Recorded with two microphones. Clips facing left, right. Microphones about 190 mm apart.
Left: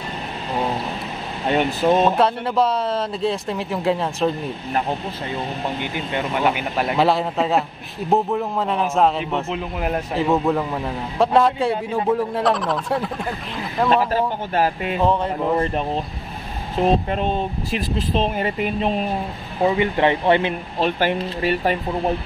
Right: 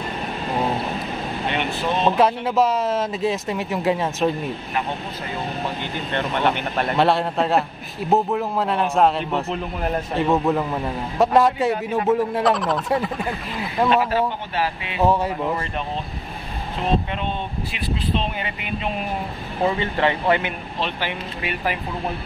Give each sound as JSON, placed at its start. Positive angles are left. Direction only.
{"t": 1.5, "sound": "speech", "side_deg": 40}
{"t": 2.1, "sound": "a man's voice", "side_deg": -5}
{"t": 5.8, "sound": "a man's voice", "side_deg": 10}
{"t": 13.8, "sound": "a man's voice", "side_deg": 45}
{"t": 15.0, "sound": "speech", "side_deg": -5}
{"t": 16.8, "sound": "speech", "side_deg": 40}
{"t": 19.8, "sound": "speech", "side_deg": 20}
{"t": 20.8, "sound": "speech", "side_deg": 45}